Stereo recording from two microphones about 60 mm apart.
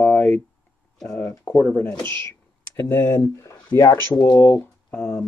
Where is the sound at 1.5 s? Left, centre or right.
Left.